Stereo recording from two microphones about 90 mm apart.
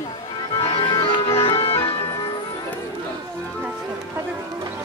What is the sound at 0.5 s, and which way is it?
Music, 80° left.